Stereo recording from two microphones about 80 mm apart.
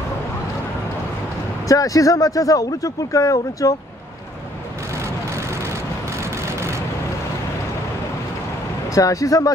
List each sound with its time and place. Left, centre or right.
1.7 s a man's voice: left
4.9 s vehicle: right
8.9 s a man's voice: left